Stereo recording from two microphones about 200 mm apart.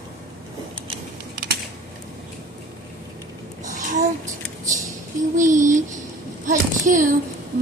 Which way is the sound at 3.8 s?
40° right (ahead or behind).